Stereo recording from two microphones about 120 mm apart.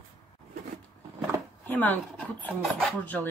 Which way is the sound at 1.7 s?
15° left (ahead or behind).